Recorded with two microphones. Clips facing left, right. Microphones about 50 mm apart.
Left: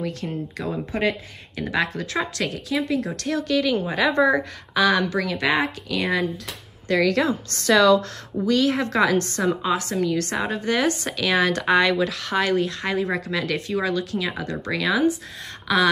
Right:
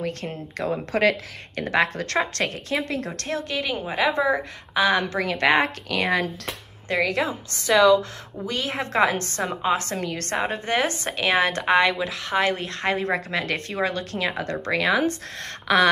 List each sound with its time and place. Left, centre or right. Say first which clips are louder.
0.0 s speech: left 1 dB; right
3.2 s a woman's voice: left 5 dB; right
3.8 s a woman's voice: left 2 dB; centre
4.7 s speech: left 1 dB; right
6.9 s a woman's voice: left 3 dB; right
7.7 s a woman's voice: even; centre
8.5 s a woman's voice: left 7 dB; right
9.9 s speech: left 3 dB; right